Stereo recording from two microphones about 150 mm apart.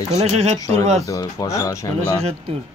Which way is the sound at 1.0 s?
20° left (ahead or behind).